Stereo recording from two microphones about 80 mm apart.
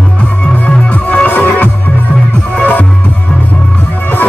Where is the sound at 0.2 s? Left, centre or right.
Centre.